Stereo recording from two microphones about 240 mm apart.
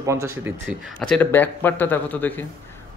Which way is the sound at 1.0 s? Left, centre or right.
Centre.